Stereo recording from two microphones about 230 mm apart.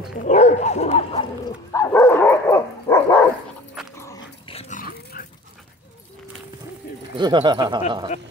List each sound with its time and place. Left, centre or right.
0.2 s dog: left
1.7 s dog: centre
4.5 s dog: left
7.2 s speech: centre